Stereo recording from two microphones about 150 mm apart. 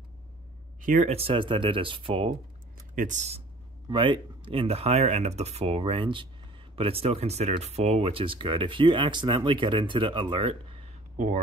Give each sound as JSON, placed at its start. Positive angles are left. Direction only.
{"t": 0.7, "sound": "speech", "side_deg": -60}
{"t": 3.0, "sound": "speech", "side_deg": -55}
{"t": 3.9, "sound": "speech", "side_deg": -35}